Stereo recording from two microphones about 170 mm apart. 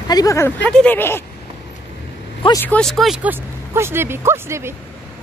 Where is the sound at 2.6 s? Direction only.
5° left (ahead or behind); by 4.7 s 15° right (ahead or behind).